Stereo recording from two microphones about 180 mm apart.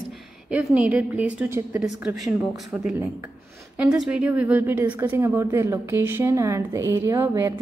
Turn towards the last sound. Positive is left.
turn(degrees=-15)  # may be behind; listen again after turning